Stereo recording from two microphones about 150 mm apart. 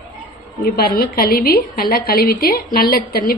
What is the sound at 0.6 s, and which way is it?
A woman's voice, 90° left.